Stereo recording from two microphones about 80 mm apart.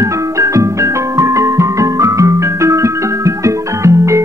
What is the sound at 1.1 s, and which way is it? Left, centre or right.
Music, right.